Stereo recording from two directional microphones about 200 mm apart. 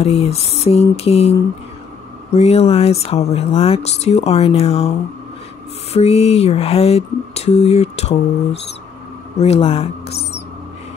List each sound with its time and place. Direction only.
0.0 s speech: 30° left (ahead or behind)
2.3 s speech: 30° left (ahead or behind)
5.9 s speech: 30° left (ahead or behind)
9.4 s speech: 30° left (ahead or behind)